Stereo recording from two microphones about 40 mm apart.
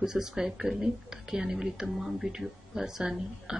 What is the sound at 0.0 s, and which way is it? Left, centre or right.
A woman's voice, centre.